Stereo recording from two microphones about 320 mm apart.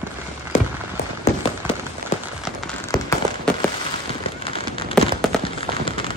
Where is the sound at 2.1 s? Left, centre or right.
Left.